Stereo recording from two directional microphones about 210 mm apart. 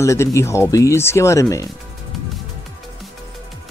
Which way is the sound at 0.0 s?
15° left (ahead or behind).